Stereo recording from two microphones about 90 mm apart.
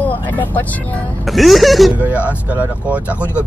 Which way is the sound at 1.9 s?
15° right (ahead or behind).